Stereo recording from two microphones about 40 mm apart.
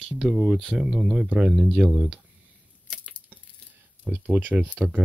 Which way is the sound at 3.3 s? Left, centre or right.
Right.